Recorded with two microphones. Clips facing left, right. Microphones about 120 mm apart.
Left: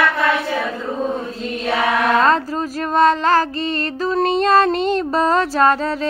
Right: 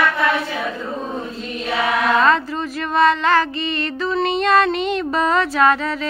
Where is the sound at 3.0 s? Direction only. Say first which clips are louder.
Left 1 dB; 40° left (ahead or behind).